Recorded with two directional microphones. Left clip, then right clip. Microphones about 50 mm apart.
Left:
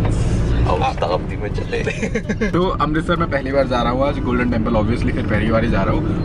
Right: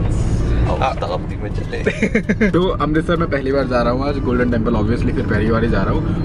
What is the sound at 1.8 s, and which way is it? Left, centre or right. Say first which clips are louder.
Speech: right 4 dB; right.